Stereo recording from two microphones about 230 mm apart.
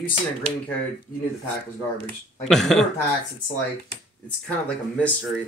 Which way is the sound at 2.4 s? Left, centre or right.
Centre.